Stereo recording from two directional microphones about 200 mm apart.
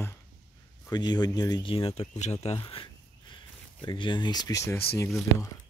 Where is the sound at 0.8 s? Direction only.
20° left (ahead or behind).